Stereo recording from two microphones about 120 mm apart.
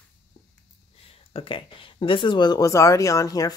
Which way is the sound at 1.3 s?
50° left (ahead or behind).